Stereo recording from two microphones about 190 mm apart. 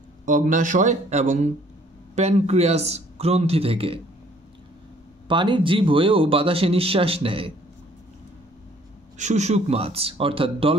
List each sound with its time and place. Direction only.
0.2 s a man's voice: 40° right (ahead or behind)
5.3 s speech: 25° right (ahead or behind)
9.2 s a man's voice: 35° right (ahead or behind)